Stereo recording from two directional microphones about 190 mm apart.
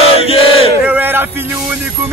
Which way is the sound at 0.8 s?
10° right (ahead or behind).